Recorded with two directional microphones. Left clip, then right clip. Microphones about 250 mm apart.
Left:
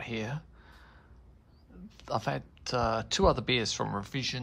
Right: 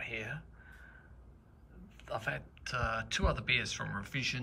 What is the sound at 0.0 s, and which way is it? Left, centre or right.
Speech, centre.